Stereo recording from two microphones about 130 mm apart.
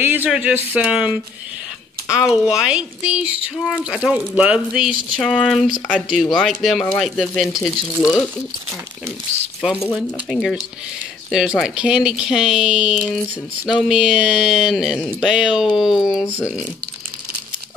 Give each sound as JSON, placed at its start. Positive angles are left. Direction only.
{"t": 0.0, "sound": "speech", "side_deg": -15}
{"t": 2.1, "sound": "speech", "side_deg": -5}
{"t": 3.5, "sound": "speech", "side_deg": 5}
{"t": 3.8, "sound": "speech", "side_deg": -5}
{"t": 10.3, "sound": "speech", "side_deg": 0}